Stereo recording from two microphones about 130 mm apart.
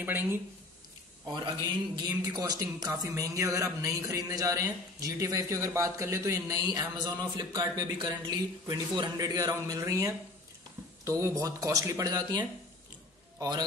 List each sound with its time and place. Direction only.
0.0 s speech: 15° right (ahead or behind)
2.0 s a man's voice: 30° right (ahead or behind)